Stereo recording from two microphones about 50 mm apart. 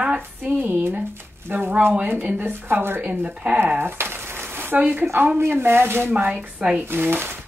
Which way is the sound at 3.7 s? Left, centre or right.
Right.